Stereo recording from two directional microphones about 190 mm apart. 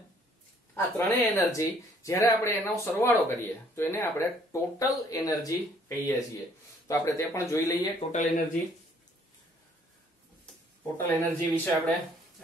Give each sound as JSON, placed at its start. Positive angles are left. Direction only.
{"t": 0.7, "sound": "speech", "side_deg": 15}
{"t": 8.1, "sound": "speech", "side_deg": 40}
{"t": 11.0, "sound": "speech", "side_deg": 10}